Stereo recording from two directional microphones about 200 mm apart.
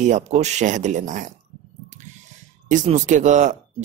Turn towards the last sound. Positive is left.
turn(degrees=-35)  # may be behind; listen again after turning